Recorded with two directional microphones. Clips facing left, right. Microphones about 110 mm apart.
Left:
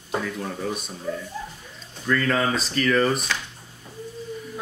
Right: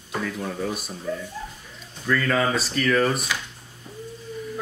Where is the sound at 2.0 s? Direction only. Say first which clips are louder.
Even; centre (ahead or behind).